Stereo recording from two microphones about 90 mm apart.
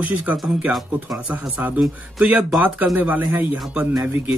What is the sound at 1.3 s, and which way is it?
Speech, 20° right (ahead or behind).